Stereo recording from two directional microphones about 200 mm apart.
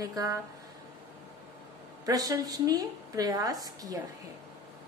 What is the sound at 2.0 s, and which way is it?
A woman's voice, 20° right (ahead or behind).